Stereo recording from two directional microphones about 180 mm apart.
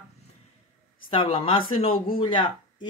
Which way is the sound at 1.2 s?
30° left (ahead or behind).